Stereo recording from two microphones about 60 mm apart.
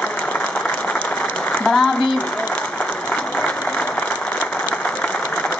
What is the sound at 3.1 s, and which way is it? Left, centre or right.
Applause, centre.